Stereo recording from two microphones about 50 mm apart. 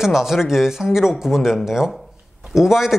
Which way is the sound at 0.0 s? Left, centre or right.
Centre.